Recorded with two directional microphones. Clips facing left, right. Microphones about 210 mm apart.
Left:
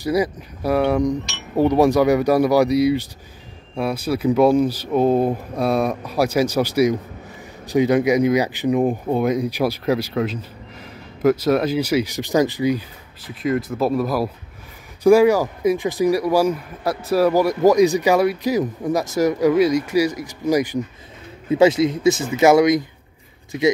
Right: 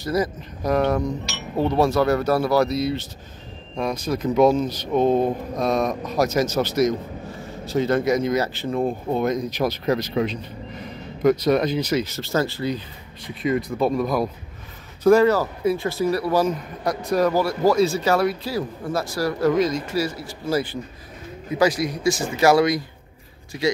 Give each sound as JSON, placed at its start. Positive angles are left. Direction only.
{"t": 0.0, "sound": "speech", "side_deg": 10}